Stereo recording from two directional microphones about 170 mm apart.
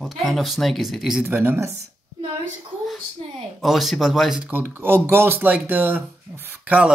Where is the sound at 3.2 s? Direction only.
35° right (ahead or behind).